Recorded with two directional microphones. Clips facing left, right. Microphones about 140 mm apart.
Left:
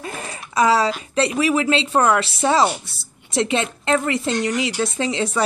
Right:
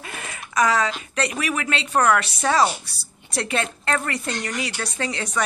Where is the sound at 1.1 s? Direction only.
25° left (ahead or behind).